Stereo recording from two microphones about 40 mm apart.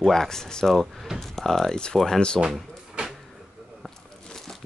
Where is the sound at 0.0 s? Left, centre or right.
Centre.